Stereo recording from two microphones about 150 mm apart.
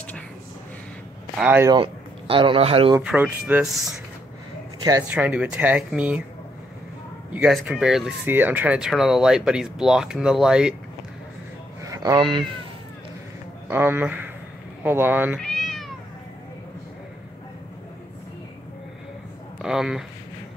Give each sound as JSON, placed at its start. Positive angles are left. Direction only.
{"t": 1.3, "sound": "speech", "side_deg": -10}
{"t": 1.7, "sound": "speech", "side_deg": -35}
{"t": 3.0, "sound": "speech", "side_deg": -10}
{"t": 5.0, "sound": "speech", "side_deg": -10}
{"t": 7.3, "sound": "speech", "side_deg": -5}
{"t": 11.8, "sound": "a sound", "side_deg": -25}
{"t": 13.7, "sound": "speech", "side_deg": -15}
{"t": 15.3, "sound": "cat", "side_deg": 0}
{"t": 19.6, "sound": "speech", "side_deg": -5}